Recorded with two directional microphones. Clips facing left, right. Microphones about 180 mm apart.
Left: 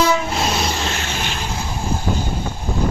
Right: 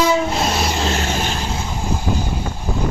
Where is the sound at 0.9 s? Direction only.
35° right (ahead or behind).